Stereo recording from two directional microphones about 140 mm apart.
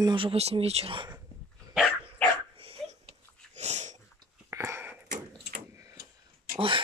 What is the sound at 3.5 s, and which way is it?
Sneeze, 55° right (ahead or behind).